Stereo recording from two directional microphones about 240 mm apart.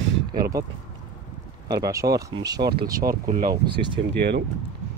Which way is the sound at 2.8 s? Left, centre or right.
Right.